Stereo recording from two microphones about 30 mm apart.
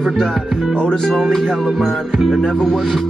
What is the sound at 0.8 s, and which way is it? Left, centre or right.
Speech, left.